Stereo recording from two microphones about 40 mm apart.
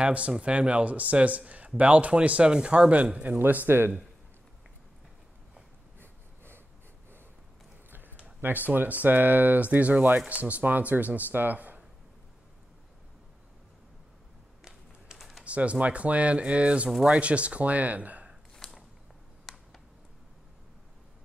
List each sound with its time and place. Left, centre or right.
0.0 s speech: right
2.9 s speech: right
3.3 s speech: right
5.9 s snort: right
7.9 s a sound: right
8.4 s speech: right
15.1 s typing: centre
15.4 s speech: right
18.6 s mechanisms: centre
19.5 s a sound: centre